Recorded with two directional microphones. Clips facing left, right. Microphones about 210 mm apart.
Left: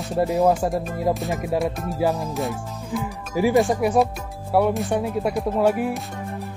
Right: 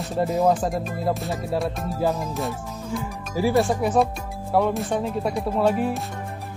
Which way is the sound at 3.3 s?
15° left (ahead or behind).